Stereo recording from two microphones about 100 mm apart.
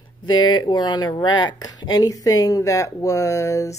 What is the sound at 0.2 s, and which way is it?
Speech, 45° left (ahead or behind).